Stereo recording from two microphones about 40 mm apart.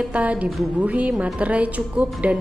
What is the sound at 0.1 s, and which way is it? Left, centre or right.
A woman's voice, right.